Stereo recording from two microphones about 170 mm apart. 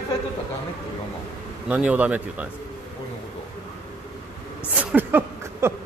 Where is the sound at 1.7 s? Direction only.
10° right (ahead or behind).